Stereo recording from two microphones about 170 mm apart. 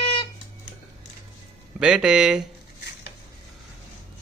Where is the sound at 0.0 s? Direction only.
30° left (ahead or behind).